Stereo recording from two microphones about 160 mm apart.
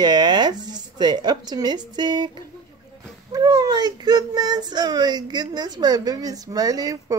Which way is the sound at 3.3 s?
25° right (ahead or behind).